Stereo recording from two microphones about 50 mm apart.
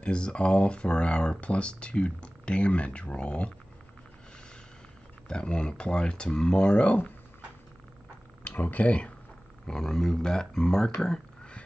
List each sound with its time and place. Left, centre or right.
0.0 s speech: centre
5.3 s speech: centre
8.5 s speech: left
9.7 s speech: centre